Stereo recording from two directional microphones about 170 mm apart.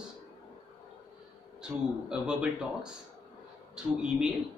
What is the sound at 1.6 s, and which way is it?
Speech, 5° right (ahead or behind).